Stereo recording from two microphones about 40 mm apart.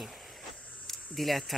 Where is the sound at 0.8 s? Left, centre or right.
Centre.